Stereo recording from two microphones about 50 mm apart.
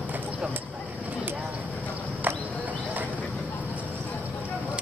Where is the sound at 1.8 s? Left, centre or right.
Right.